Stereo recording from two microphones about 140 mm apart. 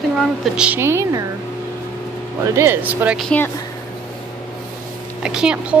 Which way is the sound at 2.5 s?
15° right (ahead or behind).